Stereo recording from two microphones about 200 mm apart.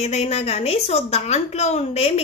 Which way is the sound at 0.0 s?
35° left (ahead or behind).